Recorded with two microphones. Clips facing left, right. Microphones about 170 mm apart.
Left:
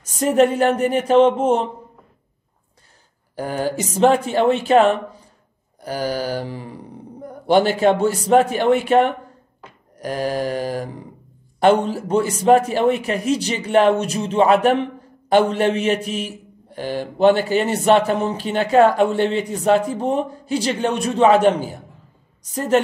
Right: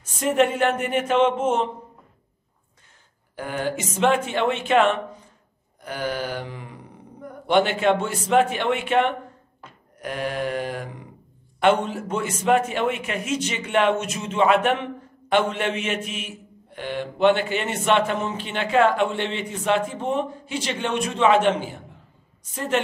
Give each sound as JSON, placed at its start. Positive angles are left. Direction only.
{"t": 0.0, "sound": "a man's voice", "side_deg": 40}
{"t": 3.3, "sound": "a man's voice", "side_deg": 35}